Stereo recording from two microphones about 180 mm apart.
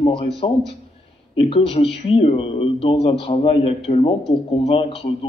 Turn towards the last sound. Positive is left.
turn(degrees=30)  # may be behind; listen again after turning